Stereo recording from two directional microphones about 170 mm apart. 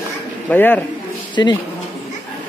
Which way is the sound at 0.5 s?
10° left (ahead or behind).